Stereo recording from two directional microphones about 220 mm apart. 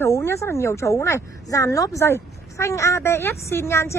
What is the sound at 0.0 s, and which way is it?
A woman's voice, 10° left (ahead or behind).